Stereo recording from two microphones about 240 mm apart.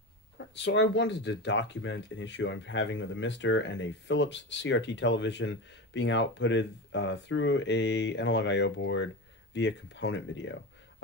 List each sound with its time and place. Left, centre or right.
0.6 s speech: left